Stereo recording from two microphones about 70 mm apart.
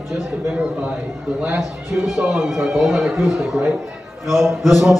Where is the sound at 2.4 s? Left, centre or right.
Centre.